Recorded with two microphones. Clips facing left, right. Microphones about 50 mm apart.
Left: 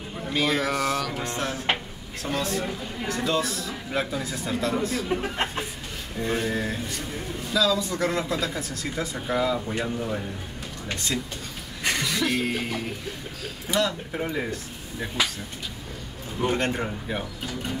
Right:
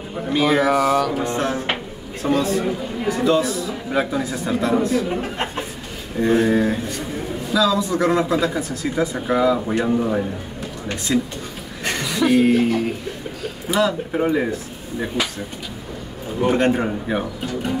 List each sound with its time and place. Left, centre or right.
0.3 s a man's voice: centre
1.2 s music: right
2.2 s a man's voice: centre
9.8 s a man's voice: right
11.1 s a man's voice: centre
13.4 s a sound: centre
14.3 s a man's voice: centre
16.4 s a man's voice: centre